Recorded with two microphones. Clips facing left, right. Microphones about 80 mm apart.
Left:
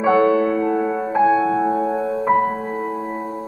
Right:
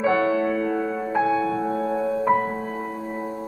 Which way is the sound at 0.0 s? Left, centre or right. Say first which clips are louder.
Left 5 dB; left.